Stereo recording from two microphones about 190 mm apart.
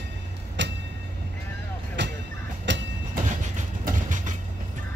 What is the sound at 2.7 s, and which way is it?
Train, 70° right (ahead or behind).